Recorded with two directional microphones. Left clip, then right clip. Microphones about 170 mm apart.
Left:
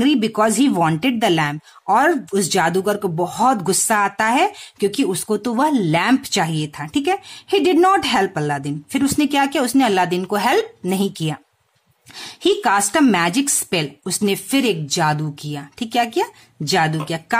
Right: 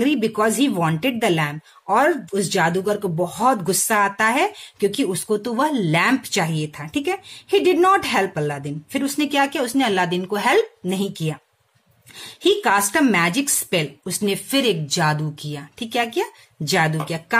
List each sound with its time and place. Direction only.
0.0 s a woman's voice: 35° left (ahead or behind)